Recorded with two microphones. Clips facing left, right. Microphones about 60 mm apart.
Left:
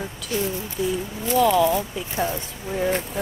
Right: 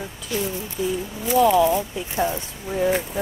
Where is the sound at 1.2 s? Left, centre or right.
Centre.